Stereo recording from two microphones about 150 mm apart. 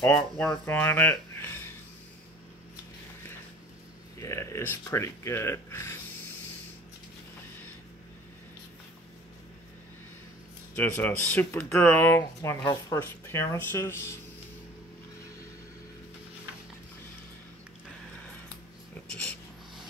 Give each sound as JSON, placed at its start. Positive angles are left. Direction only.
{"t": 0.0, "sound": "speech", "side_deg": 5}
{"t": 4.2, "sound": "speech", "side_deg": 20}
{"t": 10.8, "sound": "speech", "side_deg": 10}
{"t": 12.2, "sound": "speech", "side_deg": 25}